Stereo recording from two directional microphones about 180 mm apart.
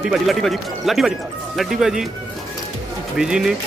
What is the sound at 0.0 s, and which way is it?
Speech, centre (ahead or behind).